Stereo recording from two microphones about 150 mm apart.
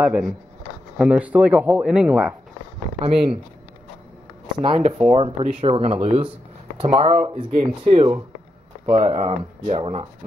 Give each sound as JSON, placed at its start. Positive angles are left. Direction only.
{"t": 0.0, "sound": "speech", "side_deg": -5}
{"t": 3.0, "sound": "speech", "side_deg": -40}
{"t": 4.6, "sound": "speech", "side_deg": -35}